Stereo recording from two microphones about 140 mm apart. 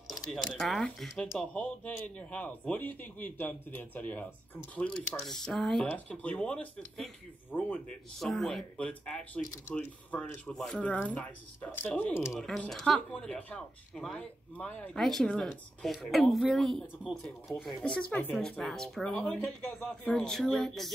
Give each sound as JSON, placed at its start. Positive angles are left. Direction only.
{"t": 0.1, "sound": "a man's voice", "side_deg": 5}
{"t": 18.1, "sound": "a man's voice", "side_deg": 10}
{"t": 20.2, "sound": "speech", "side_deg": 0}